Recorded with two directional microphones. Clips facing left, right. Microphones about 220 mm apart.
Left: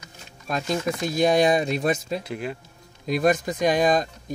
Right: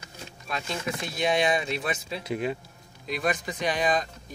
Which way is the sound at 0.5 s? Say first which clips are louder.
Left 7 dB; 45° left (ahead or behind).